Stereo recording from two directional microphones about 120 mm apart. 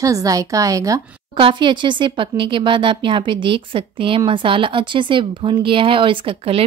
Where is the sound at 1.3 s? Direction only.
45° right (ahead or behind).